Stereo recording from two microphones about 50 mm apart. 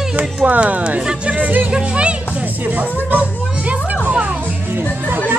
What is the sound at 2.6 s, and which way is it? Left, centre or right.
Speech, right.